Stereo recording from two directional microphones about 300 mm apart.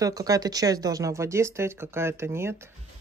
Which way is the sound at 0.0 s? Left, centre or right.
Centre.